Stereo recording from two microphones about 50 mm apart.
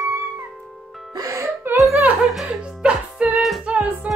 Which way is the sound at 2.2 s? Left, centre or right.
Centre.